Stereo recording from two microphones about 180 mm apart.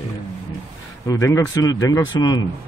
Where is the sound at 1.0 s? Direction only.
20° left (ahead or behind).